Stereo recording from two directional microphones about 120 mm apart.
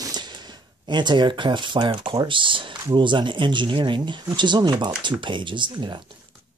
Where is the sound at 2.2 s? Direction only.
45° right (ahead or behind).